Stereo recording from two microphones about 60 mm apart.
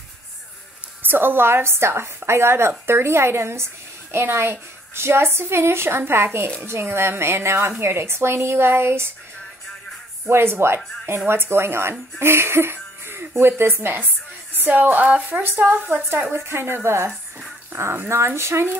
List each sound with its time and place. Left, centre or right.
1.0 s a woman's voice: right
10.2 s a woman's voice: right
16.3 s a woman's voice: right